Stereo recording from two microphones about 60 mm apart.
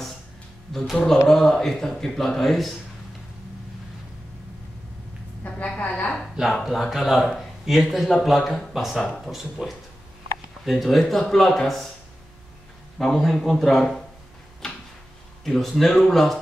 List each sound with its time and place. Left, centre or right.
0.7 s speech: centre
5.8 s a sound: left
6.6 s speech: centre
13.0 s speech: centre
15.4 s speech: centre